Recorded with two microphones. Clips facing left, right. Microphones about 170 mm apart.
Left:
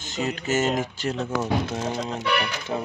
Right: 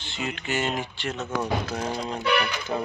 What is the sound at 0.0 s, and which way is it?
Speech, 40° left (ahead or behind).